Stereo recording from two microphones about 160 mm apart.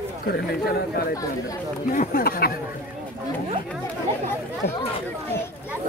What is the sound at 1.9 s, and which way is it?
Speech, 60° left (ahead or behind).